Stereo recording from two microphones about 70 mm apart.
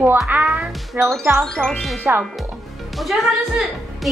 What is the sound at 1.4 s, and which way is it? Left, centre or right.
Speech, centre.